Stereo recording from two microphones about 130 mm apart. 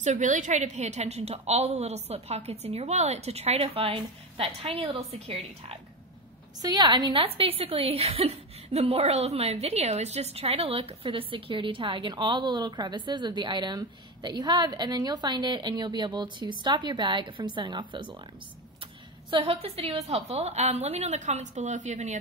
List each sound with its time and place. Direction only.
0.0 s a woman's voice: 70° right (ahead or behind); by 5.8 s 50° right (ahead or behind)
6.6 s a woman's voice: 35° right (ahead or behind)
19.3 s a woman's voice: 45° right (ahead or behind); by 22.2 s 65° right (ahead or behind)